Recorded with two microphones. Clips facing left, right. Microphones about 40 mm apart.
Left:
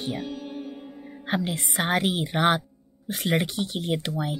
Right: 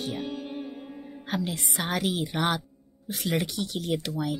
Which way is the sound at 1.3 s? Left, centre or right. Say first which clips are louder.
Left 3 dB; left.